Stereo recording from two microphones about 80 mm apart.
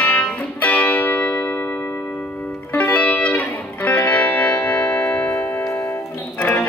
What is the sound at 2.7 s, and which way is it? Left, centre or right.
Music, centre.